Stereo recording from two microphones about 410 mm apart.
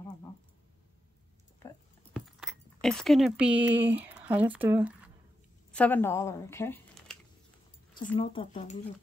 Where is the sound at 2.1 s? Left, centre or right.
Centre.